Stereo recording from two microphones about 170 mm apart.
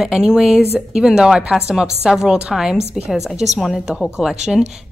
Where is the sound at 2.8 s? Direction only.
40° right (ahead or behind).